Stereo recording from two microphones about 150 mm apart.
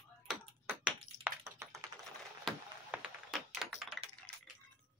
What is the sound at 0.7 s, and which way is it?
Tap, 15° right (ahead or behind).